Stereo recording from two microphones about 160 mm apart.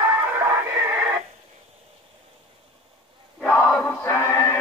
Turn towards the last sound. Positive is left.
turn(degrees=15)  # may be behind; listen again after turning